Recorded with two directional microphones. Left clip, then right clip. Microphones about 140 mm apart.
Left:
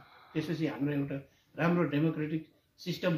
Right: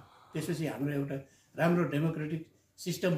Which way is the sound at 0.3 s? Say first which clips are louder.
Left 2 dB; 5° right (ahead or behind).